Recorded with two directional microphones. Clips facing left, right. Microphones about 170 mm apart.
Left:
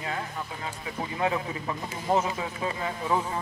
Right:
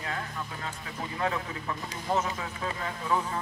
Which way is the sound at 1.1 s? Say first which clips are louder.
Left 3 dB; 15° left (ahead or behind).